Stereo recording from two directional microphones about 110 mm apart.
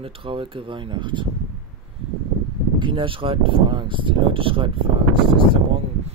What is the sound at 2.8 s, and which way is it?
Speech, 50° right (ahead or behind).